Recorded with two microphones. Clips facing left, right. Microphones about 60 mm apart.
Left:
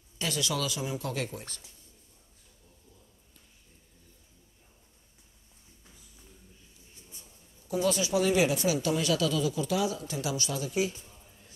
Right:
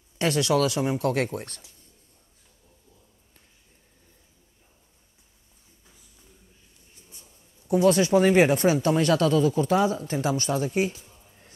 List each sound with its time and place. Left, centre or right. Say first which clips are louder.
0.2 s speech: right 9 dB; right
7.6 s speech: right 9 dB; right
11.1 s a sound: right 1 dB; centre